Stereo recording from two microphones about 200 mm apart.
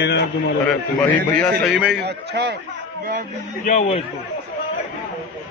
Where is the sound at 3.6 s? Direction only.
35° left (ahead or behind).